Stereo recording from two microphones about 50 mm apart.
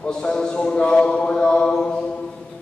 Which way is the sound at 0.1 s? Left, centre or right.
Centre.